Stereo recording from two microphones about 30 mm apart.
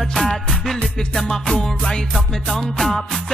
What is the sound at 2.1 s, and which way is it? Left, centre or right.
Music, centre.